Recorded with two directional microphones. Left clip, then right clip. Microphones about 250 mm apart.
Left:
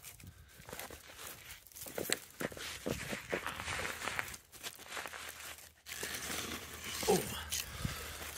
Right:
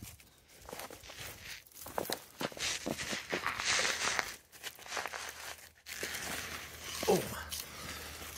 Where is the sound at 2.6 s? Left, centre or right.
Right.